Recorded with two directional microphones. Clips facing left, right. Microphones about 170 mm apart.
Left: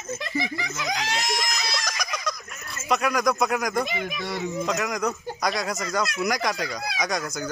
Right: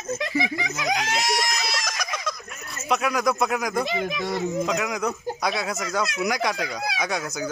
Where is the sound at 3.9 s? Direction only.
45° right (ahead or behind).